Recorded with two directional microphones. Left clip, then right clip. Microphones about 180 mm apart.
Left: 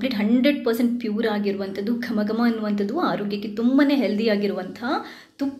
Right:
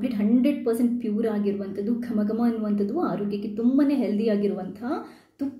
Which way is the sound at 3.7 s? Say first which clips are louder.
Left 5 dB; 15° right (ahead or behind).